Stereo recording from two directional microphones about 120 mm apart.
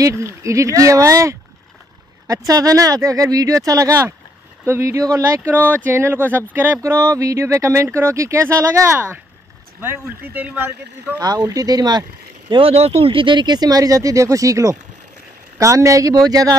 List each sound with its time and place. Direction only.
0.0 s speech: 25° right (ahead or behind)
11.1 s speech: 35° right (ahead or behind)